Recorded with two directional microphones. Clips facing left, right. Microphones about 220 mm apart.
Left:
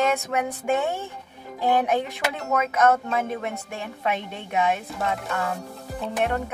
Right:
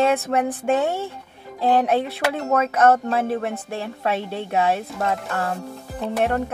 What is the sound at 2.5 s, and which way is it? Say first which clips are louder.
A woman's voice: right 3 dB; 35° right (ahead or behind).